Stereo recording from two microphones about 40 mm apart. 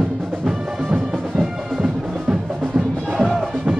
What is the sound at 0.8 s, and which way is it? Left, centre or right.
Music, right.